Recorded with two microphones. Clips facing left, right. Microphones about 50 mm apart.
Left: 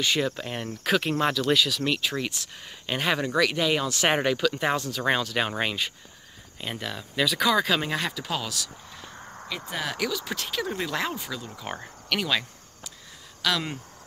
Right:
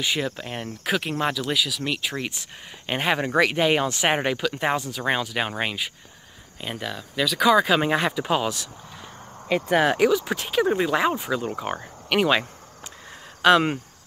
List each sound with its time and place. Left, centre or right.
0.0 s speech: centre; by 4.0 s right
4.0 s speech: centre
7.4 s speech: centre
9.5 s speech: right
9.9 s speech: right
12.1 s a sound: right
13.4 s speech: right